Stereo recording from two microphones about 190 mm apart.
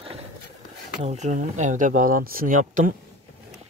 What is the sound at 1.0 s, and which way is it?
Speech, 40° right (ahead or behind).